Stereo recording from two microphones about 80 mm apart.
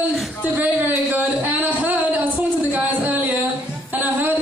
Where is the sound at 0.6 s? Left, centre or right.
Right.